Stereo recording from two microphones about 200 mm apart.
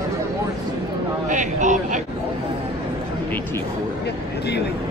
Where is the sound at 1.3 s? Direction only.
40° right (ahead or behind).